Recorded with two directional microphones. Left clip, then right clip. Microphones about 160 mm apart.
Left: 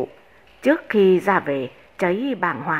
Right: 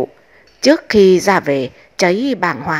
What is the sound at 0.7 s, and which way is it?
A woman's voice, 40° right (ahead or behind).